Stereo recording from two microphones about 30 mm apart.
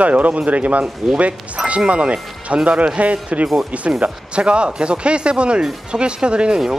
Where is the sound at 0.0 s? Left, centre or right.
Right.